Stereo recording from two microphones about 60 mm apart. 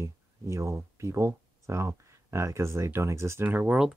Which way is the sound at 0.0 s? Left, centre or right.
Right.